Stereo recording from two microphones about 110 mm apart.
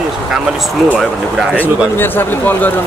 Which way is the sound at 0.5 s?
Centre (ahead or behind).